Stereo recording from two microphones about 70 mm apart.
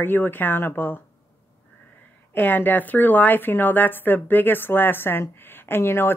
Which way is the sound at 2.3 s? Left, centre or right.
Left.